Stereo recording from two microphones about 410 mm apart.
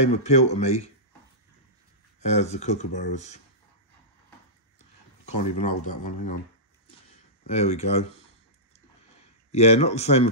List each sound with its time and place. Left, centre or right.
0.0 s speech: centre
2.1 s speech: centre
5.2 s speech: centre
7.4 s speech: centre
9.5 s speech: centre